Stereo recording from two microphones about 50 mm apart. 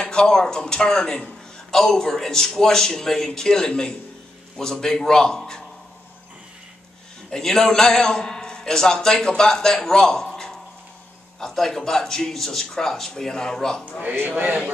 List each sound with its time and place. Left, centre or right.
0.0 s a man's voice: centre
7.2 s a man's voice: centre
14.3 s speech: right